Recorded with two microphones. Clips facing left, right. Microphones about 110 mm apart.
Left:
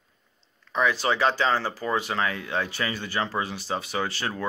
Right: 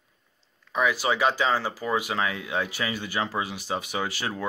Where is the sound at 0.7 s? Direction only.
10° right (ahead or behind).